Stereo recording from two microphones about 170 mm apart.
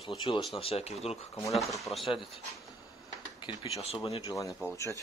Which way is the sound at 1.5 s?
Centre (ahead or behind).